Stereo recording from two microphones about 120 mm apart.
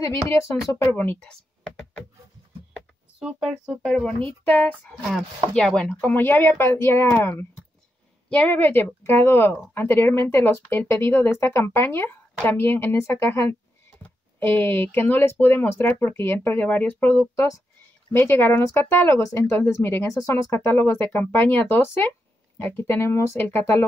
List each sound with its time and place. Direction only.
0.0 s speech: 25° left (ahead or behind)
3.2 s speech: 5° right (ahead or behind)
3.9 s speech: 5° left (ahead or behind)